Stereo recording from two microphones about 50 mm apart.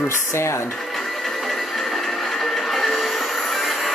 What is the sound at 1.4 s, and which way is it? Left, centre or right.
Music, centre.